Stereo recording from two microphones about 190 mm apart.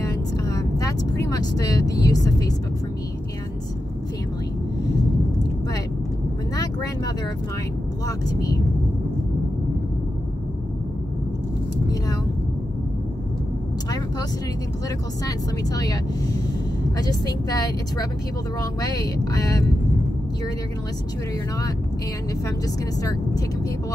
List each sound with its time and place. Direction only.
0.0 s vehicle: 20° left (ahead or behind)
6.5 s vehicle: 20° left (ahead or behind)
15.2 s a woman's voice: 20° left (ahead or behind)
17.0 s a woman's voice: 20° left (ahead or behind)